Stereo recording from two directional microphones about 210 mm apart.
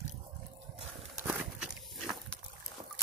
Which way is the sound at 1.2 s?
Centre (ahead or behind).